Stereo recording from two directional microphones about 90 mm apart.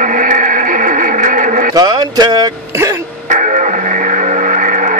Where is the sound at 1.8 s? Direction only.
45° right (ahead or behind).